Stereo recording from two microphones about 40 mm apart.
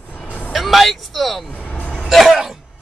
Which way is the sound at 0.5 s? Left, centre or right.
Centre.